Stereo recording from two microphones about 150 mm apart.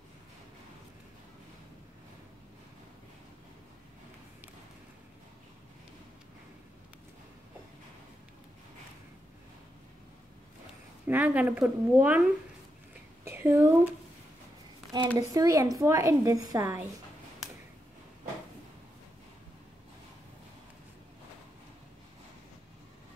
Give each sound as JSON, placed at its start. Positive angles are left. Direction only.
{"t": 11.1, "sound": "a woman's voice", "side_deg": -10}
{"t": 13.2, "sound": "a sound", "side_deg": -15}
{"t": 15.1, "sound": "a woman's voice", "side_deg": -20}